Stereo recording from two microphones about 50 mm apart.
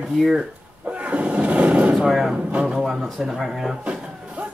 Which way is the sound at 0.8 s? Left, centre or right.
Right.